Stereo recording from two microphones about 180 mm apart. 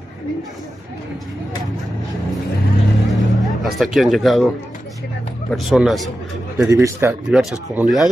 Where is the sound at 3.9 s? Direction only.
Centre (ahead or behind).